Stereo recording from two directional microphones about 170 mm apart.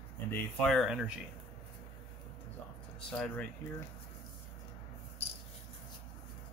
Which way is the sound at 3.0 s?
5° left (ahead or behind).